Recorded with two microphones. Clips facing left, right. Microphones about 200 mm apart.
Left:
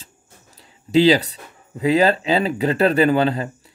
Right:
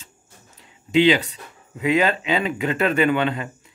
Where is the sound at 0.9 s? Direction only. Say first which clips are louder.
Left 2 dB; 35° left (ahead or behind).